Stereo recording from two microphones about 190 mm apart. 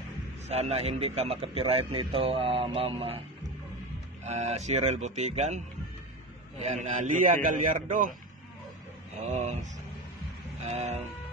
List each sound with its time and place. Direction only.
0.5 s a man's voice: 35° right (ahead or behind)
4.3 s a man's voice: 35° right (ahead or behind)
6.6 s a man's voice: 40° right (ahead or behind)
9.2 s a man's voice: 35° right (ahead or behind)
10.6 s music: 35° right (ahead or behind)